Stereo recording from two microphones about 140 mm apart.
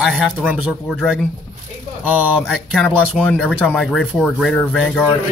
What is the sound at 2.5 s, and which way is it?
Speech, 5° left (ahead or behind).